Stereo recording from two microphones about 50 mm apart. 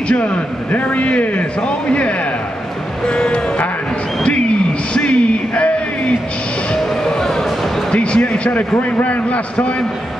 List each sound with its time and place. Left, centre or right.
0.1 s a man's voice: left
4.9 s a sound: left
7.9 s speech: left
8.5 s a man's voice: left